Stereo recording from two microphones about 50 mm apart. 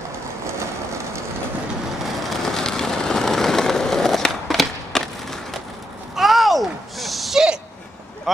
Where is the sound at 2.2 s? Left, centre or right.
Centre.